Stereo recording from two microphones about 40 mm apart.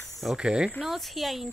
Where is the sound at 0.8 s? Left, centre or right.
Centre.